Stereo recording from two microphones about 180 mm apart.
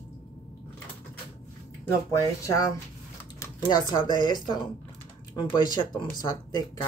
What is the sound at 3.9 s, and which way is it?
Speech, 25° left (ahead or behind).